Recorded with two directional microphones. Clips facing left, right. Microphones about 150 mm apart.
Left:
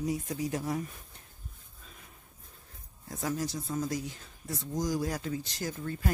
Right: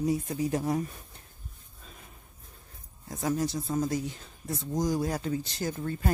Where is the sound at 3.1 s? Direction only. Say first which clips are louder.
Right 4 dB; 25° right (ahead or behind).